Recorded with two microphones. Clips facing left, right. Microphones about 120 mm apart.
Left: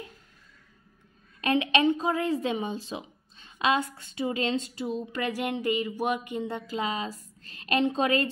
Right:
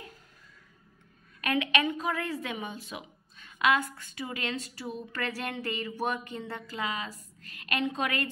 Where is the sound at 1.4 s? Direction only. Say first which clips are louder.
Left 5 dB; 25° left (ahead or behind).